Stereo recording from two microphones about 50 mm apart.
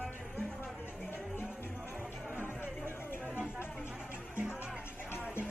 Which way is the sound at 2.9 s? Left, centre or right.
Left.